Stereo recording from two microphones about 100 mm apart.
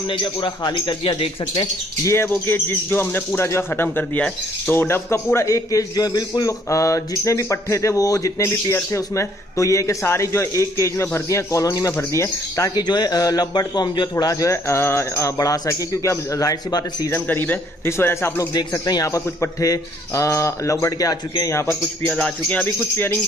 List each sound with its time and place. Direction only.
0.1 s a man's voice: 55° left (ahead or behind)
2.0 s a man's voice: 25° left (ahead or behind)
12.8 s a man's voice: 45° left (ahead or behind)
14.1 s a man's voice: 35° left (ahead or behind)
17.1 s speech: 20° left (ahead or behind)
18.5 s a man's voice: 45° left (ahead or behind)
21.5 s speech: 25° left (ahead or behind)
22.1 s speech: 10° left (ahead or behind)